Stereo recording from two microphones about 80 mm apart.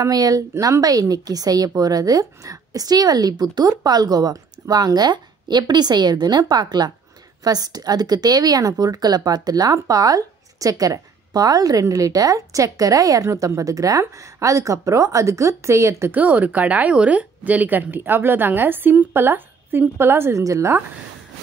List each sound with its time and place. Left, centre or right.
0.0 s speech: right
16.1 s speech: centre
20.4 s speech: right